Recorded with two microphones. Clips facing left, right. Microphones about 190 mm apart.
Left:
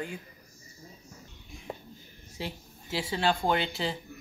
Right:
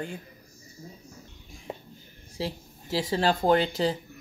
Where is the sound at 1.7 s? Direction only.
20° right (ahead or behind).